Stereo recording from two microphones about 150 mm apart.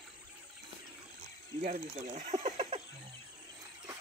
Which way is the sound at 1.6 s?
50° right (ahead or behind).